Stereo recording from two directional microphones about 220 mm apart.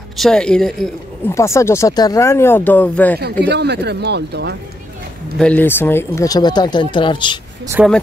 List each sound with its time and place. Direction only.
0.2 s speech: 5° left (ahead or behind)
3.2 s speech: 50° right (ahead or behind)
5.4 s speech: 10° left (ahead or behind)
7.8 s speech: 5° right (ahead or behind)